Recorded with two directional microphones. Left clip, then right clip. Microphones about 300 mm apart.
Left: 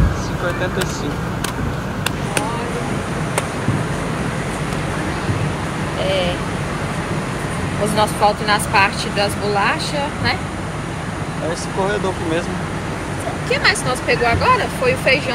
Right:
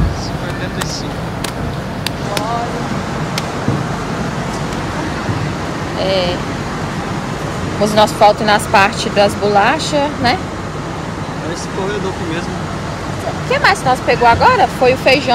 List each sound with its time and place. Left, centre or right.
7.9 s speech: right
13.5 s speech: right